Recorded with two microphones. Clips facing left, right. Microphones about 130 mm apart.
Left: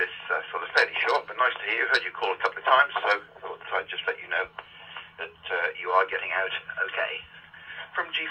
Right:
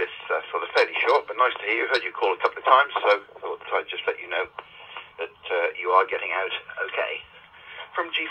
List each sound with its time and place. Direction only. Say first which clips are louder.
0.0 s radio: right 4 dB; 55° right (ahead or behind)
2.6 s speech: right 4 dB; 55° right (ahead or behind)
3.6 s radio: right 4 dB; 55° right (ahead or behind)
5.9 s speech: right 2 dB; 55° right (ahead or behind)